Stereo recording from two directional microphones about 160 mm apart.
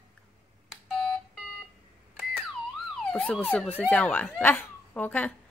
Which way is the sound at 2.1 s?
Centre (ahead or behind).